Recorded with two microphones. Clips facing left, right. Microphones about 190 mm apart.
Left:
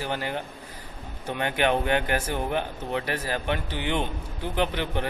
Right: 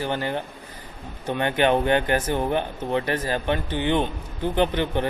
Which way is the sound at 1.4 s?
5° left (ahead or behind).